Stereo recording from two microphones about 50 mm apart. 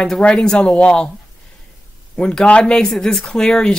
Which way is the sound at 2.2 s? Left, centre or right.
Centre.